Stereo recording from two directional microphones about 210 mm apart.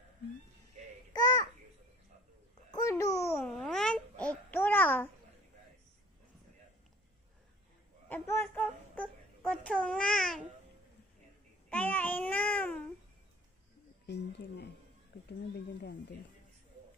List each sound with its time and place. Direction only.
1.1 s babbling: 15° left (ahead or behind)
2.7 s babbling: 15° left (ahead or behind)
3.3 s babbling: 5° left (ahead or behind)
8.1 s child singing: 10° left (ahead or behind)
11.7 s child singing: 10° left (ahead or behind)
14.0 s a sound: 55° left (ahead or behind)
15.2 s cat: 50° left (ahead or behind)